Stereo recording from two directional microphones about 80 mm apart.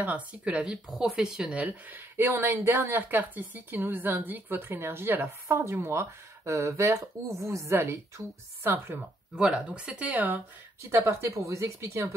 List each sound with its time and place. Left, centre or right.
0.0 s speech: centre
0.7 s speech: centre; by 3.0 s right
3.0 s a woman's voice: right
9.3 s speech: centre
10.8 s a woman's voice: right